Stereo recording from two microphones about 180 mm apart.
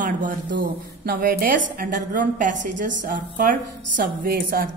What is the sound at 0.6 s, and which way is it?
A woman's voice, 55° right (ahead or behind).